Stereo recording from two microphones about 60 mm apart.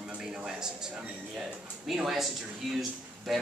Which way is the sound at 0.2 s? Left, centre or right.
Centre.